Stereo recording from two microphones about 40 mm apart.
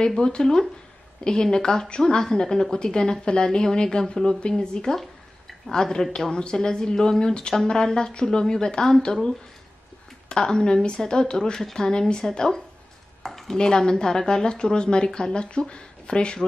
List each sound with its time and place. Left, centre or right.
0.0 s speech: left
10.3 s speech: centre
13.2 s a sound: centre
13.6 s speech: centre